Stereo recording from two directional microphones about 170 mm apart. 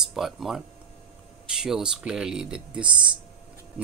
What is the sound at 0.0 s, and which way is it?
Speech, centre (ahead or behind).